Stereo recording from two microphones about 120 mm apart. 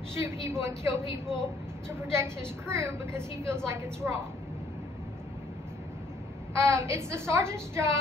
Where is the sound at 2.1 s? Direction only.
20° right (ahead or behind).